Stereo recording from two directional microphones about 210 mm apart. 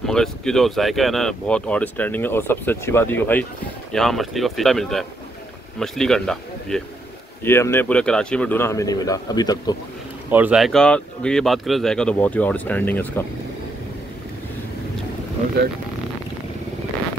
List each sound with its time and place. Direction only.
0.0 s speech: centre (ahead or behind); by 9.8 s 20° left (ahead or behind)
10.3 s speech: 5° right (ahead or behind)